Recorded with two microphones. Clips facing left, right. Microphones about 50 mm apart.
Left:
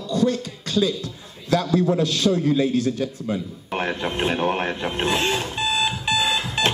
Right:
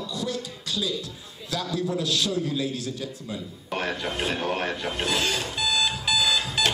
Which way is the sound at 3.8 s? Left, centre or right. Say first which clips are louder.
Left 4 dB; left.